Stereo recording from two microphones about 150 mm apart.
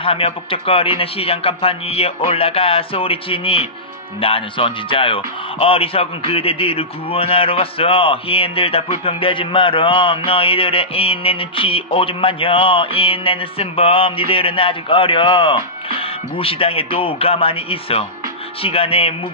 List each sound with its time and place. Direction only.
0.0 s speech: 35° left (ahead or behind)